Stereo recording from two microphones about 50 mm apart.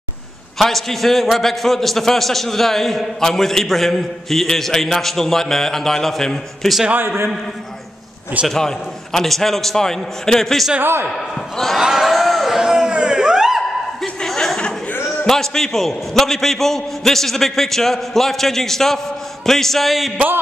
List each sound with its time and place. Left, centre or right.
0.6 s a man's voice: centre
8.5 s a man's voice: centre
10.8 s a man's voice: right
11.1 s speech: centre
11.8 s a sound: centre
14.0 s chuckle: centre
15.0 s a man's voice: centre